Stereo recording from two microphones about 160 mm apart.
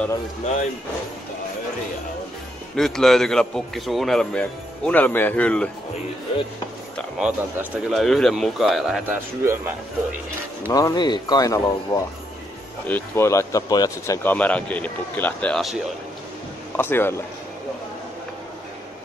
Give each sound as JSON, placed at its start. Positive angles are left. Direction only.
{"t": 2.7, "sound": "a man's voice", "side_deg": 0}
{"t": 7.2, "sound": "a man's voice", "side_deg": -5}
{"t": 9.4, "sound": "speech", "side_deg": -15}
{"t": 10.7, "sound": "speech", "side_deg": 25}
{"t": 16.7, "sound": "speech", "side_deg": 15}